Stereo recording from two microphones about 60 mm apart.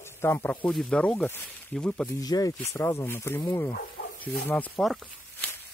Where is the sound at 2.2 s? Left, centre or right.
Left.